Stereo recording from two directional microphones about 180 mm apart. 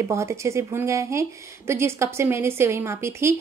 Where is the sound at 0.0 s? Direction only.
15° right (ahead or behind).